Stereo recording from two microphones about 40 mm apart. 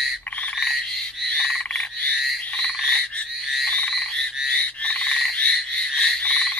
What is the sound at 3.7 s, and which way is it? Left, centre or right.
Frog, left.